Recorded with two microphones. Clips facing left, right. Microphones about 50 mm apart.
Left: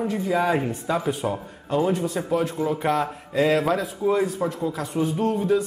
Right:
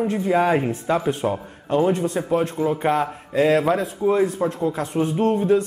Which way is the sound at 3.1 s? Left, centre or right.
Centre.